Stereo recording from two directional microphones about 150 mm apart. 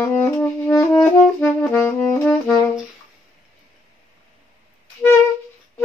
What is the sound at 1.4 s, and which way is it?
Brass instrument, 15° left (ahead or behind).